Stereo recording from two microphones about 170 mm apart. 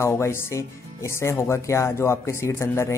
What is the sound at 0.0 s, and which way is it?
Speech, 15° left (ahead or behind).